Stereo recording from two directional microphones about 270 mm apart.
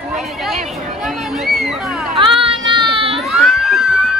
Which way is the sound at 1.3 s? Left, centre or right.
Centre.